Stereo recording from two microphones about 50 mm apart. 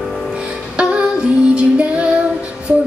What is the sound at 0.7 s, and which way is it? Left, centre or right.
Female singing, right.